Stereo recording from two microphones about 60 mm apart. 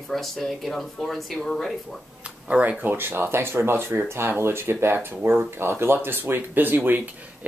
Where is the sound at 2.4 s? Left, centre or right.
Right.